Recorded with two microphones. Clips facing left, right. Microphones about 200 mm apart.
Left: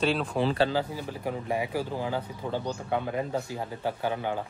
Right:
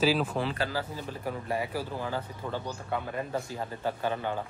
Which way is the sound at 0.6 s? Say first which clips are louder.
Left 6 dB; 25° left (ahead or behind).